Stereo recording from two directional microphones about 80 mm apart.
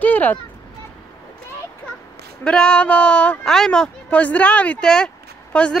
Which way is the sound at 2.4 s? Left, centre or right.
Centre.